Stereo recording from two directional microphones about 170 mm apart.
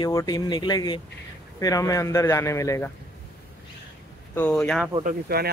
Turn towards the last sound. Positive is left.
turn(degrees=-65)  # may be behind; listen again after turning